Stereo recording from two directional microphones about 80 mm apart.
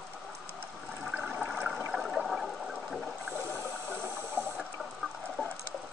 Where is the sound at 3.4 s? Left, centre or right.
Right.